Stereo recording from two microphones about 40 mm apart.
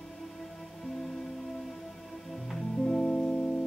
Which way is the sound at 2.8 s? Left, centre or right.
Left.